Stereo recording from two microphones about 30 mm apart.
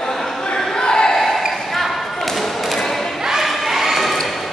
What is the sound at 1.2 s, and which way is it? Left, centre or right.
Basketball bounce, centre.